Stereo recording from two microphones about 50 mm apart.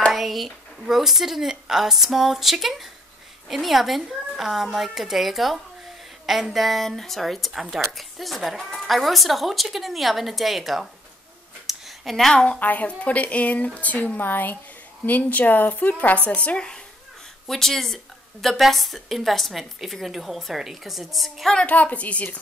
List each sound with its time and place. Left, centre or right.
0.1 s a woman's voice: centre
11.6 s a sound: centre
12.4 s a woman's voice: left
16.3 s speech: left
17.5 s a woman's voice: centre
21.6 s speech: left